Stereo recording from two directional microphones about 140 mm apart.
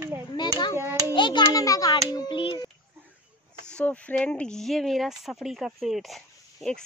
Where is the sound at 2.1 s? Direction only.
35° left (ahead or behind).